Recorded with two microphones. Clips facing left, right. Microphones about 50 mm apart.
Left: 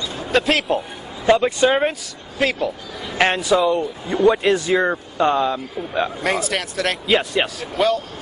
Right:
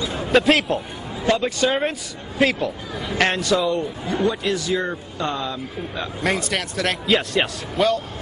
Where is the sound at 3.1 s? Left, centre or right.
Centre.